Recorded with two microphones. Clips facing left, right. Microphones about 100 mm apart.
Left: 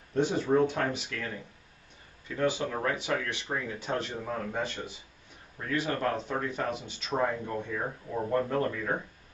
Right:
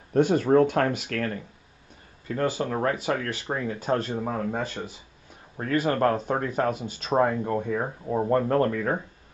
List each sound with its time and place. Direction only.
0.1 s speech: 60° right (ahead or behind)
2.2 s speech: 45° right (ahead or behind)
5.6 s speech: 50° right (ahead or behind)
8.3 s speech: 60° right (ahead or behind)